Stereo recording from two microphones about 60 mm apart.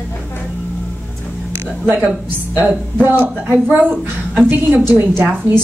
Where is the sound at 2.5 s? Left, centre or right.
Right.